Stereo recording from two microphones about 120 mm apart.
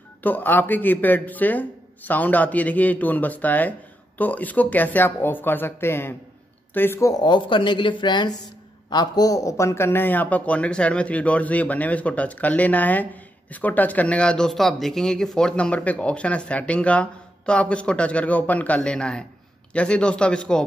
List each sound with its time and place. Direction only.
0.2 s speech: 15° left (ahead or behind)